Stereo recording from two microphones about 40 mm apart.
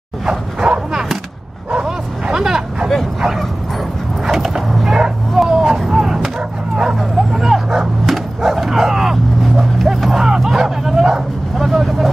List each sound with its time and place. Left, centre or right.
0.3 s dog: centre
2.3 s vehicle: centre
4.3 s dog: centre
4.8 s a sound: centre
6.8 s dog: centre
11.5 s vehicle: centre